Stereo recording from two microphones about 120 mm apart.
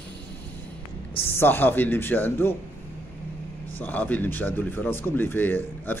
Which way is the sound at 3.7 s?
15° left (ahead or behind).